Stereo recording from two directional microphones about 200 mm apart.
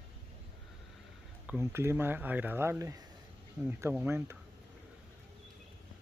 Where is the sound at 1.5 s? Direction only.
10° right (ahead or behind).